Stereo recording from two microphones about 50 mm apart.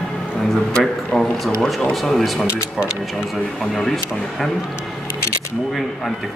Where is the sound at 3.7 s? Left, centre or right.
Centre.